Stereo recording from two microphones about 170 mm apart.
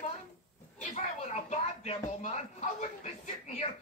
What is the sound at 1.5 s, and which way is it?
Music, 40° left (ahead or behind).